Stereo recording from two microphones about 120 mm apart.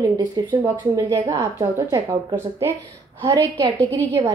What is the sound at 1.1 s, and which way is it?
Speech, 25° right (ahead or behind).